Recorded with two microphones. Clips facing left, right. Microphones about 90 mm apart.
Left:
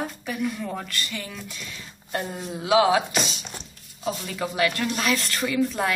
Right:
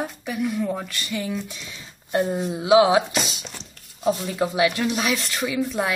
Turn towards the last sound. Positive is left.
turn(degrees=-10)  # may be behind; listen again after turning